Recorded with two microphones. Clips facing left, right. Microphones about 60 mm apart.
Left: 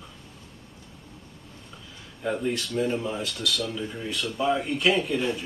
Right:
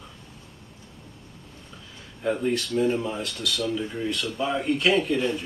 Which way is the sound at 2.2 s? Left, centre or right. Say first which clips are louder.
Right 2 dB; centre.